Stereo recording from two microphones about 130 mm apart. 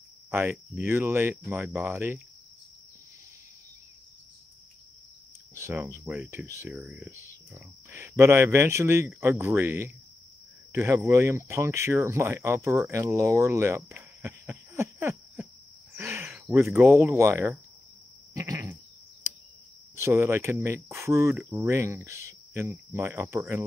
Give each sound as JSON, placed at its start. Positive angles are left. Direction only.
{"t": 0.3, "sound": "speech", "side_deg": -15}
{"t": 5.6, "sound": "speech", "side_deg": -20}
{"t": 7.5, "sound": "speech", "side_deg": -20}
{"t": 16.0, "sound": "a sound", "side_deg": -15}
{"t": 16.3, "sound": "cricket", "side_deg": -15}
{"t": 17.0, "sound": "speech", "side_deg": -20}
{"t": 20.0, "sound": "speech", "side_deg": -20}